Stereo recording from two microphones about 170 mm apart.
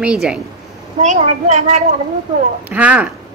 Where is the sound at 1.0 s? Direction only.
40° right (ahead or behind).